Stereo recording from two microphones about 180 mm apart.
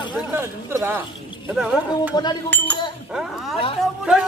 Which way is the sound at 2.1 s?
25° left (ahead or behind).